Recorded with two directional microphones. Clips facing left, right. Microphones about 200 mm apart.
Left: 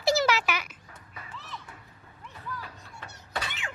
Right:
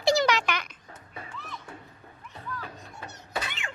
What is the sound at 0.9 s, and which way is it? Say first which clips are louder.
Music: right 3 dB; 30° right (ahead or behind).